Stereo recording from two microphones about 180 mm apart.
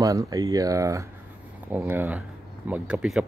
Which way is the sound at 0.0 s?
20° right (ahead or behind).